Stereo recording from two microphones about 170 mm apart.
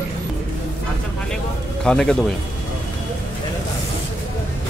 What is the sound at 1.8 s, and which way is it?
Speech, 5° left (ahead or behind).